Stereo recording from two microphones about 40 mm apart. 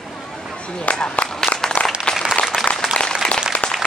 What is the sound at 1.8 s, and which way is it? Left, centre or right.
Applause, left.